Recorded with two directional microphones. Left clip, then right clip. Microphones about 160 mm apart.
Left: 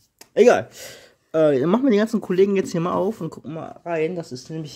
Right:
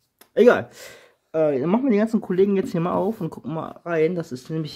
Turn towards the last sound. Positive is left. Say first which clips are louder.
# right 3 dB
turn(degrees=-20)  # may be behind; listen again after turning